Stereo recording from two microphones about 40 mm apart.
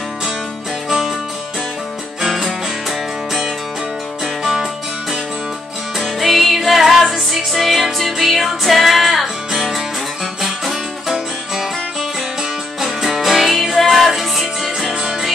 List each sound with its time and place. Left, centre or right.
0.8 s music: centre
2.2 s music: centre
4.4 s music: centre
5.9 s music: centre
12.8 s music: centre
15.0 s music: centre